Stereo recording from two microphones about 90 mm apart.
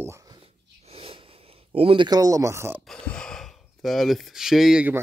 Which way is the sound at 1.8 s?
90° right.